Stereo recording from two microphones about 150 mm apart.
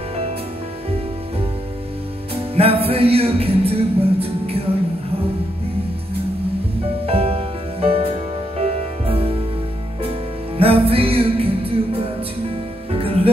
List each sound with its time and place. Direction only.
2.5 s music: 40° right (ahead or behind)
7.1 s music: 40° right (ahead or behind)
10.6 s music: 40° right (ahead or behind)